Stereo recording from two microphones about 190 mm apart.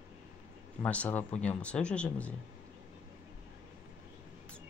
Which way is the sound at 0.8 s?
10° left (ahead or behind).